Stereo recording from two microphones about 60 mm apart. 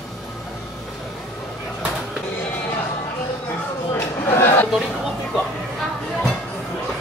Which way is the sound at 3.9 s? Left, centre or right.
Left.